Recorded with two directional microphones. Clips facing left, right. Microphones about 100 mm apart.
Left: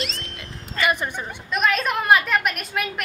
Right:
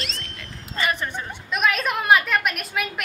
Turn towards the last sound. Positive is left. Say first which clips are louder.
# left 1 dB
turn(degrees=0)  # may be behind; listen again after turning